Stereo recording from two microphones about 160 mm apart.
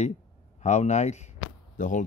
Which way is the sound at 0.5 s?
45° left (ahead or behind).